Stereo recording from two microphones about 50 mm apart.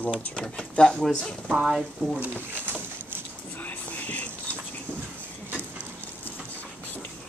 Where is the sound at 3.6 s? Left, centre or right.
Left.